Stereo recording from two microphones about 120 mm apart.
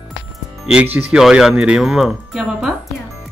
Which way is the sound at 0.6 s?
10° right (ahead or behind).